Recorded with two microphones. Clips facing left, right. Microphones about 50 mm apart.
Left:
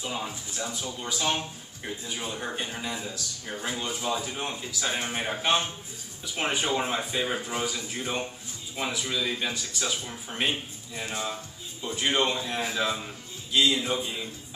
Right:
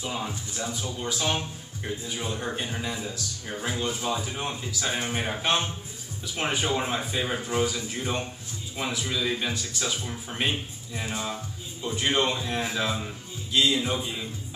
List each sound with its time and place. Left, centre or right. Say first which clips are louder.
0.0 s speech: right 1 dB; centre